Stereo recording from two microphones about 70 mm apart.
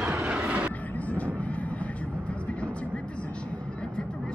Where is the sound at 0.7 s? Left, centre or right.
Left.